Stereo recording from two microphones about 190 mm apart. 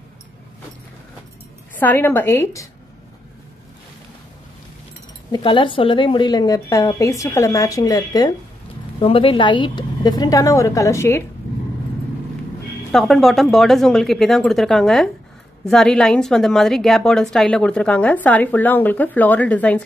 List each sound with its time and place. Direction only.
1.8 s a woman's voice: 10° left (ahead or behind)
5.3 s a woman's voice: 25° left (ahead or behind)
12.9 s a woman's voice: centre (ahead or behind)